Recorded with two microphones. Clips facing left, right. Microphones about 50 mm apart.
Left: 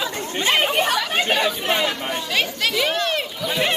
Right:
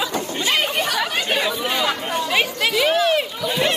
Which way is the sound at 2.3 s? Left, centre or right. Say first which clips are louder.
Right 2 dB; centre.